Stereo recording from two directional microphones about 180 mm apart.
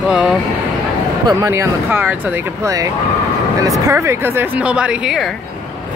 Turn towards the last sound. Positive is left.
turn(degrees=-5)  # may be behind; listen again after turning